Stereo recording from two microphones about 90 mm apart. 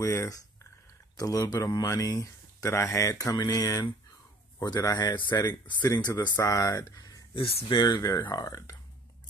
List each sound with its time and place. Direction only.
0.0 s speech: 35° left (ahead or behind); by 6.3 s 50° left (ahead or behind)
6.3 s speech: 40° left (ahead or behind)
7.3 s speech: 90° left
7.7 s speech: 45° left (ahead or behind)